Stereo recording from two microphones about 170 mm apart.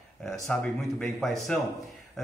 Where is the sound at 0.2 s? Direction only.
5° left (ahead or behind).